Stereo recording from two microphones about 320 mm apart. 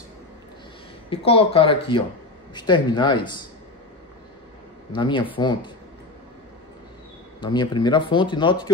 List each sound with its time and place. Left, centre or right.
1.1 s speech: centre
4.9 s speech: centre
7.3 s speech: centre